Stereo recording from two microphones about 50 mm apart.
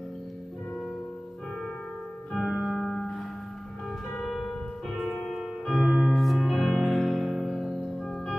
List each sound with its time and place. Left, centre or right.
2.3 s music: centre
4.2 s music: centre
5.3 s music: centre